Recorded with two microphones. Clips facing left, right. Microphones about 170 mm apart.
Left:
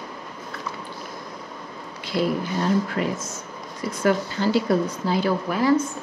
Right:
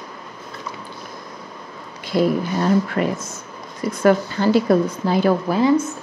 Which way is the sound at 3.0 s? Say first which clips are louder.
Right 4 dB; 60° right (ahead or behind).